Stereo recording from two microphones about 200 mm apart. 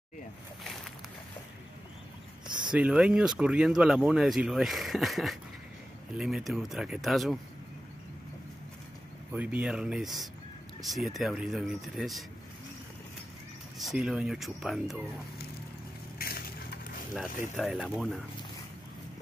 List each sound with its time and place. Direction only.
2.4 s a sound: 20° right (ahead or behind)
2.7 s speech: 5° right (ahead or behind)
9.3 s speech: 5° right (ahead or behind)
13.7 s speech: centre (ahead or behind)
16.2 s crushing: 50° left (ahead or behind)
17.6 s speech: centre (ahead or behind)